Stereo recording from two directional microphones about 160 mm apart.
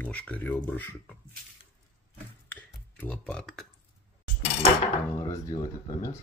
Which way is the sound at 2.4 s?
10° left (ahead or behind).